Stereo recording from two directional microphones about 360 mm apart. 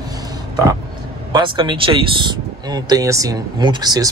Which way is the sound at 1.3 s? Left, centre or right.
Centre.